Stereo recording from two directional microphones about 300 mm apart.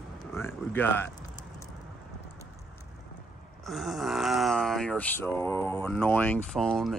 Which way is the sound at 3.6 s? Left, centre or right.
Centre.